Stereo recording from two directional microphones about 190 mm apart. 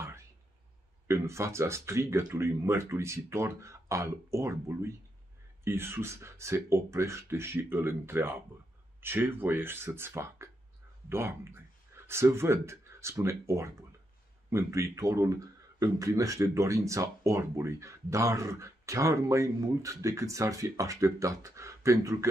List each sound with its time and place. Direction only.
1.0 s speech: 15° right (ahead or behind)